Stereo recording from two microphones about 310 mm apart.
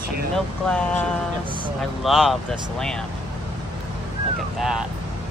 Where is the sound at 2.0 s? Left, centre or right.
Centre.